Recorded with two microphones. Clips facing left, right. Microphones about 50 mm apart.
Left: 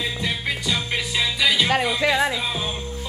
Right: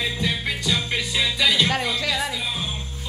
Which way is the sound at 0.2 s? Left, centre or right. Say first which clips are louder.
Even; centre.